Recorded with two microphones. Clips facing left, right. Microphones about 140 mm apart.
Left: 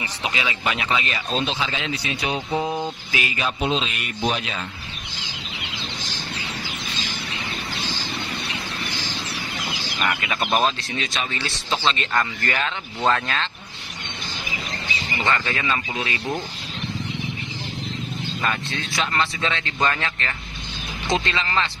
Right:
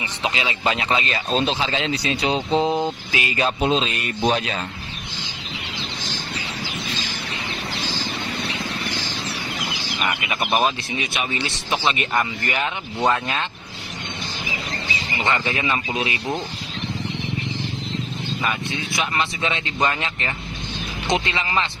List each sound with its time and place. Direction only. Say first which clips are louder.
0.0 s a man's voice: right 2 dB; 25° right (ahead or behind)
3.3 s speech: right 4 dB; 40° right (ahead or behind)
10.2 s speech: right 1 dB; 15° right (ahead or behind)
15.1 s a man's voice: right 1 dB; 20° right (ahead or behind)
18.4 s speech: even; 15° right (ahead or behind)